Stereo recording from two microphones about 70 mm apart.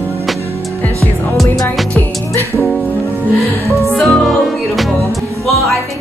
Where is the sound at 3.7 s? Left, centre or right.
Centre.